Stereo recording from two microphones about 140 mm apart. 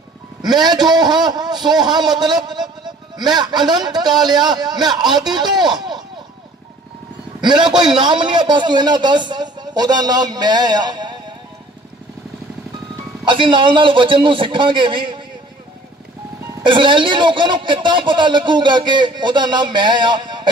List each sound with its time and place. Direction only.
0.4 s a man's voice: 30° right (ahead or behind)
7.4 s speech: 30° right (ahead or behind)
13.2 s speech: 35° right (ahead or behind)
16.6 s speech: 35° right (ahead or behind)